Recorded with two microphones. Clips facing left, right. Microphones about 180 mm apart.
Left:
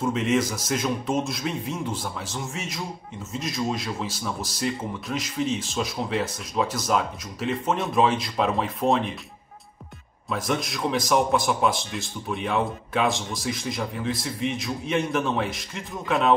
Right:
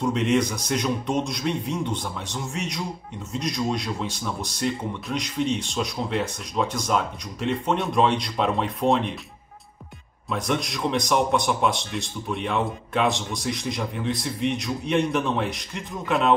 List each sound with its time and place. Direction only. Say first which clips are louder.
0.0 s a man's voice: right 1 dB; centre (ahead or behind)
10.3 s a man's voice: right 1 dB; centre (ahead or behind)